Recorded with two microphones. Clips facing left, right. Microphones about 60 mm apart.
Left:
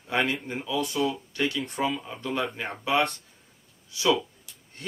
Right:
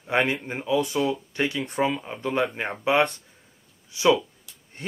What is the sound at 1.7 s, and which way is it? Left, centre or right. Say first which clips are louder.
Speech: right 4 dB; right.